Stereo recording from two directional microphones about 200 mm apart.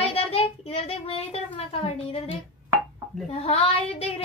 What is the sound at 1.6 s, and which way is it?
Speech, 30° left (ahead or behind).